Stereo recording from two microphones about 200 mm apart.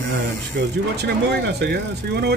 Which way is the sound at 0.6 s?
55° right (ahead or behind).